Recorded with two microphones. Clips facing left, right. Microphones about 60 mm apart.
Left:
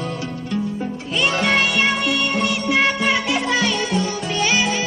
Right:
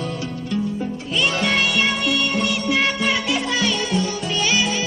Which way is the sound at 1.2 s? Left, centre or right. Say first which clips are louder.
Left 2 dB; left.